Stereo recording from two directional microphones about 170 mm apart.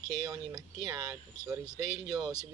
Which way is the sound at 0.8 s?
20° right (ahead or behind).